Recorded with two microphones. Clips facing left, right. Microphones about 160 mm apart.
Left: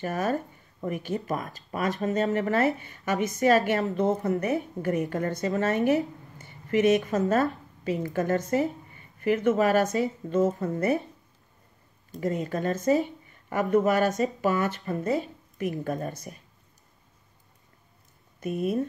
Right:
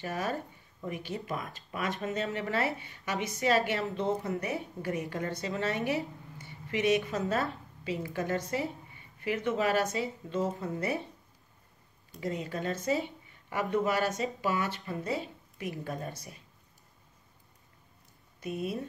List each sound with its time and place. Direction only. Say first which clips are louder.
0.0 s speech: left 6 dB; 45° left (ahead or behind)
12.1 s speech: left 6 dB; 45° left (ahead or behind)
18.4 s speech: left 7 dB; 50° left (ahead or behind)